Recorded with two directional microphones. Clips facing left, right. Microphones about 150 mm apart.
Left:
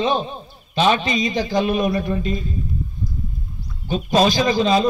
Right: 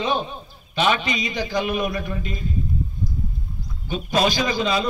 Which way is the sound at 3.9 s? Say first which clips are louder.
Left 4 dB; 30° left (ahead or behind).